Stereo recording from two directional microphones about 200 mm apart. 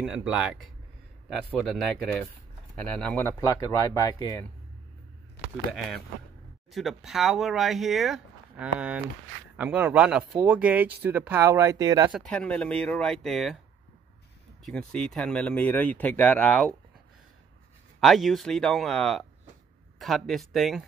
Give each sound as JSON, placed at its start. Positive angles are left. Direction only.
{"t": 0.0, "sound": "speech", "side_deg": 0}
{"t": 6.7, "sound": "speech", "side_deg": 0}
{"t": 12.1, "sound": "speech", "side_deg": 5}
{"t": 14.6, "sound": "speech", "side_deg": 5}
{"t": 18.0, "sound": "speech", "side_deg": 0}